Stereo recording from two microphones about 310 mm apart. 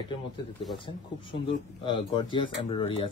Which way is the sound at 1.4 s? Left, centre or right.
Centre.